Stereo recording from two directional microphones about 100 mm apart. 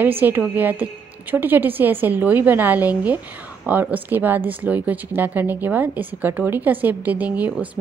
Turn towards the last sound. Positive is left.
turn(degrees=-15)  # may be behind; listen again after turning